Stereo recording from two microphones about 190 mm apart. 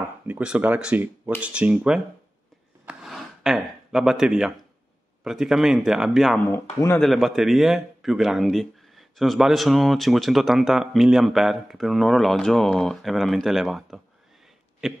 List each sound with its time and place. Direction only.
0.3 s speech: 5° right (ahead or behind)
2.8 s a sound: 5° right (ahead or behind)
5.2 s a man's voice: centre (ahead or behind)
6.5 s speech: 15° left (ahead or behind)
7.0 s a man's voice: centre (ahead or behind)